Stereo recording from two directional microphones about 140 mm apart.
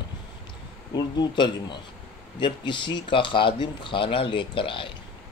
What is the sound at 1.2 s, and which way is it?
Speech, 35° left (ahead or behind).